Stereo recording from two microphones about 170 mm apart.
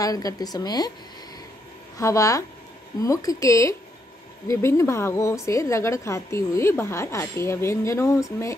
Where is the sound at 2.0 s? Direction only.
20° left (ahead or behind).